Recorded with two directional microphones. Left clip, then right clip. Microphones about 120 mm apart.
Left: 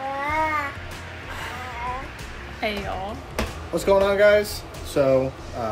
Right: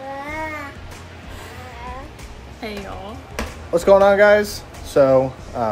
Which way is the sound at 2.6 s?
Centre (ahead or behind).